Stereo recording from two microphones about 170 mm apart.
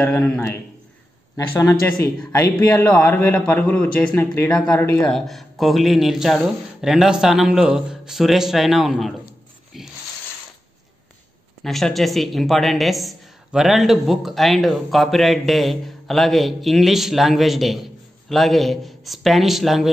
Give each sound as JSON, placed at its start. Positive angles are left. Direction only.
{"t": 0.0, "sound": "a man's voice", "side_deg": 10}
{"t": 2.5, "sound": "a man's voice", "side_deg": 10}
{"t": 9.7, "sound": "a sound", "side_deg": 0}
{"t": 11.6, "sound": "speech", "side_deg": 0}